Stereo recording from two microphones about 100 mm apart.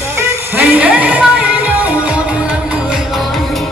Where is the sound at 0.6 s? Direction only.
15° right (ahead or behind).